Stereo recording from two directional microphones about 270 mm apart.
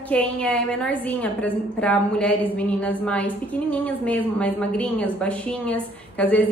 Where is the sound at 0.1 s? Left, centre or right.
Centre.